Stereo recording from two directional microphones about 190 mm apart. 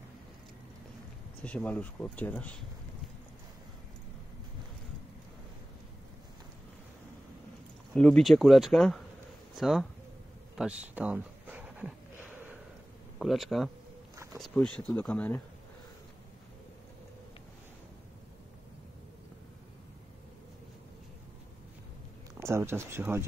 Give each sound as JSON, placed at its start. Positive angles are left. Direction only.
{"t": 1.4, "sound": "speech", "side_deg": 5}
{"t": 7.9, "sound": "speech", "side_deg": 5}
{"t": 10.5, "sound": "a sound", "side_deg": -5}
{"t": 13.2, "sound": "speech", "side_deg": 0}
{"t": 14.1, "sound": "a sound", "side_deg": -15}
{"t": 14.4, "sound": "speech", "side_deg": 5}
{"t": 22.4, "sound": "speech", "side_deg": -15}